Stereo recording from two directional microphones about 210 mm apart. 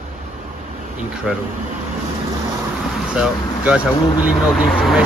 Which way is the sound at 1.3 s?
5° right (ahead or behind).